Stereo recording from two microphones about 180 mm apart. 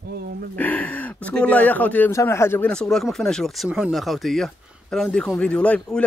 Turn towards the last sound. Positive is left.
turn(degrees=5)  # may be behind; listen again after turning